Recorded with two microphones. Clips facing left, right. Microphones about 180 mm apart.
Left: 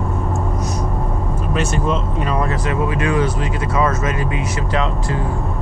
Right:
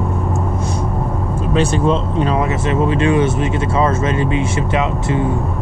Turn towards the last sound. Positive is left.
turn(degrees=-25)  # may be behind; listen again after turning